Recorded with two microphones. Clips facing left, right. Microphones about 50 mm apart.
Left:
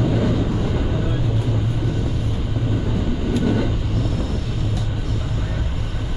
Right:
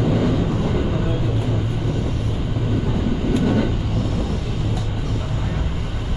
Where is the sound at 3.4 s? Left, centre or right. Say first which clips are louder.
Even; centre.